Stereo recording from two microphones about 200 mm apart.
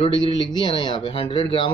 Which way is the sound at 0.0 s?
25° left (ahead or behind).